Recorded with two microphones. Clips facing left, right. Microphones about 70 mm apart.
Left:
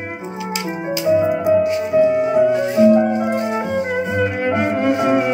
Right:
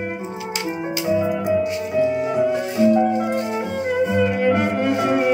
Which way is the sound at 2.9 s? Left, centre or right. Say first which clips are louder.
Left 2 dB; left.